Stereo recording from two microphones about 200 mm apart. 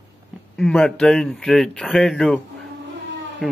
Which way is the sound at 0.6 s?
5° left (ahead or behind).